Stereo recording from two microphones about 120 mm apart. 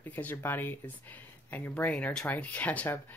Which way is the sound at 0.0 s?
15° left (ahead or behind).